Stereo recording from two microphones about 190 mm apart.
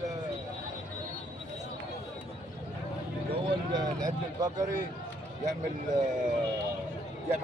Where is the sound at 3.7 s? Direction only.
20° right (ahead or behind).